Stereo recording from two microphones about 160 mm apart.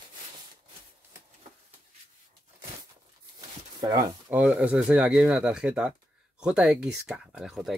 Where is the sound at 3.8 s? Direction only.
20° right (ahead or behind).